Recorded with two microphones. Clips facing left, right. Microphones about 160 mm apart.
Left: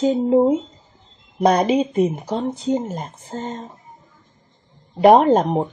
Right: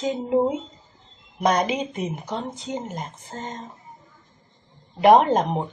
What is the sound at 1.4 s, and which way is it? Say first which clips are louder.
A woman's voice: left 6 dB; 35° left (ahead or behind).